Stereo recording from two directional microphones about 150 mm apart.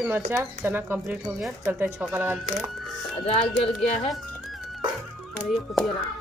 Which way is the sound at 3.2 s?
40° left (ahead or behind).